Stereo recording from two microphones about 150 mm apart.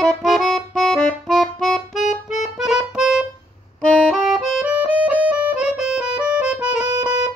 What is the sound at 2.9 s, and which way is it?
Music, 5° right (ahead or behind).